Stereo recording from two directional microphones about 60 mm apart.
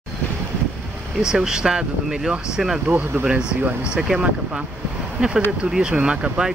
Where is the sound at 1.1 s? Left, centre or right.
Centre.